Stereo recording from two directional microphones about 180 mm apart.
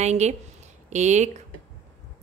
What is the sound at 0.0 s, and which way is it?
A woman's voice, 40° right (ahead or behind).